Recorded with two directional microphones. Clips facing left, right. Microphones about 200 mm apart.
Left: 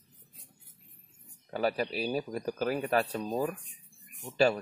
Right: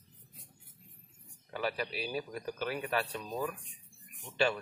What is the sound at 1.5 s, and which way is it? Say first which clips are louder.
Speech: left 6 dB; 40° left (ahead or behind).